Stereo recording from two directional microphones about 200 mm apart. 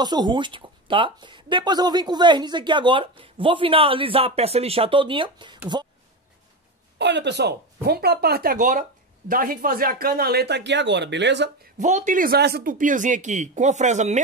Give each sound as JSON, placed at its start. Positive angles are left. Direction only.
{"t": 0.0, "sound": "speech", "side_deg": -20}
{"t": 7.0, "sound": "speech", "side_deg": -60}
{"t": 11.8, "sound": "speech", "side_deg": -35}